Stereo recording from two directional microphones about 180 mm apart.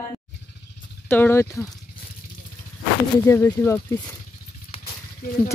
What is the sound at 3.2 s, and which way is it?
Speech, 15° left (ahead or behind).